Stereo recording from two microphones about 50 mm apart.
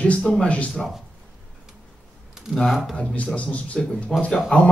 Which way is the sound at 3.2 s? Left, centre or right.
Left.